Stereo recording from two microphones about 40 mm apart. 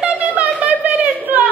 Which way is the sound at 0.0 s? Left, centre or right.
Right.